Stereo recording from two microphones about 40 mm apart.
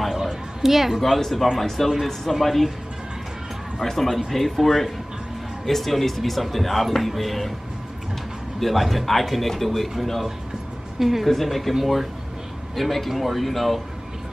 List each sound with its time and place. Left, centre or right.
0.1 s a sound: centre
1.8 s speech: centre
3.8 s speech: centre
8.5 s speech: centre